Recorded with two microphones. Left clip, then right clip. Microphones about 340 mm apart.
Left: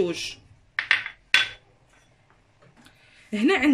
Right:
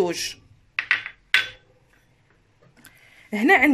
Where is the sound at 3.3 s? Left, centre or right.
Centre.